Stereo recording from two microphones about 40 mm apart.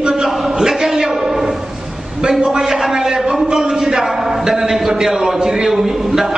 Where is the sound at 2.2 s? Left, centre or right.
Centre.